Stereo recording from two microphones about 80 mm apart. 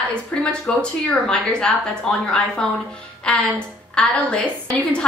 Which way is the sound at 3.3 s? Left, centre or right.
Centre.